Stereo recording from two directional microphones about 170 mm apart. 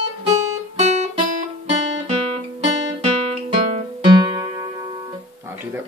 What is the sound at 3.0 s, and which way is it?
Guitar, 35° right (ahead or behind).